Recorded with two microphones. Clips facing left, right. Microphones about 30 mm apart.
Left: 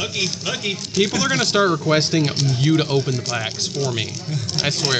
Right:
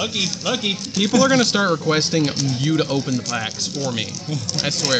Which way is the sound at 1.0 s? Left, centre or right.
Left.